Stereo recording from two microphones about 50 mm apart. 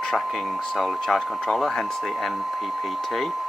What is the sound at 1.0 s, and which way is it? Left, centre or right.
Speech, centre.